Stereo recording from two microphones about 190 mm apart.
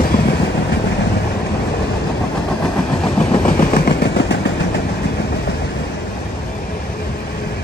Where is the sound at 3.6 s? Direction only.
50° left (ahead or behind).